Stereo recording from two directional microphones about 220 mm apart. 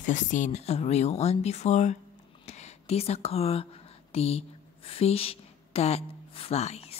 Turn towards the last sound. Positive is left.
turn(degrees=30)  # may be behind; listen again after turning